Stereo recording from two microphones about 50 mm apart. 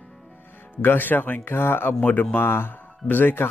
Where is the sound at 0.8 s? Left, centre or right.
Left.